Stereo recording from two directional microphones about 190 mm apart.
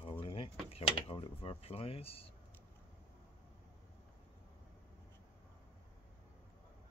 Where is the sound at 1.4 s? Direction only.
30° left (ahead or behind).